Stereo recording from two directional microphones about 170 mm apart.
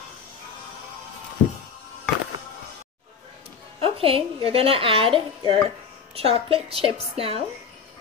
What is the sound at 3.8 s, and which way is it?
A woman's voice, 35° right (ahead or behind).